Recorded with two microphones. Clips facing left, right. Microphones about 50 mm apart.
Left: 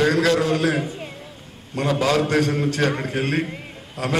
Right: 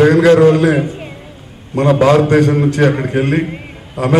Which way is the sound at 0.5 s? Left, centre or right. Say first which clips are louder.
Right 8 dB; centre.